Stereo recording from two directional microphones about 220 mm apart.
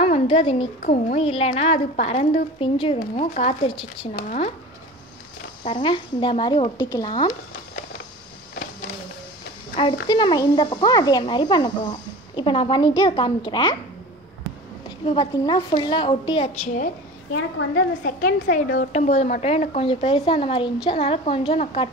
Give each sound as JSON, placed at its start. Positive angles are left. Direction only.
{"t": 0.0, "sound": "a woman's voice", "side_deg": 25}
{"t": 4.1, "sound": "speech", "side_deg": 35}
{"t": 5.6, "sound": "a woman's voice", "side_deg": 25}
{"t": 10.0, "sound": "a woman's voice", "side_deg": 20}
{"t": 15.0, "sound": "a woman's voice", "side_deg": 20}
{"t": 18.0, "sound": "a woman's voice", "side_deg": 40}